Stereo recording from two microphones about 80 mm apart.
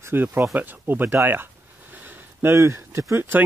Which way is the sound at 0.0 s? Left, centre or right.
Right.